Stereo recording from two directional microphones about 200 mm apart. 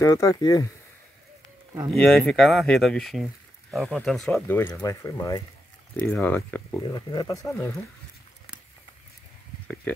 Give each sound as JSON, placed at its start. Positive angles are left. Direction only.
{"t": 0.0, "sound": "speech", "side_deg": 15}
{"t": 2.0, "sound": "speech", "side_deg": 0}
{"t": 6.9, "sound": "speech", "side_deg": 20}
{"t": 9.9, "sound": "speech", "side_deg": 10}